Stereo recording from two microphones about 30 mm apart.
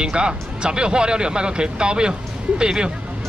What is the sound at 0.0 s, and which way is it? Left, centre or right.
Speech, right.